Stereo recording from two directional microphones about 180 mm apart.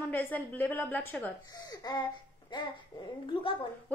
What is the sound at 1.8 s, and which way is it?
Speech, 20° left (ahead or behind).